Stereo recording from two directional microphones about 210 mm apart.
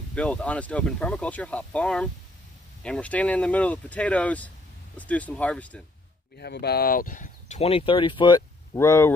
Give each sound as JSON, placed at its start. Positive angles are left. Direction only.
{"t": 0.1, "sound": "speech", "side_deg": 5}
{"t": 6.3, "sound": "speech", "side_deg": 50}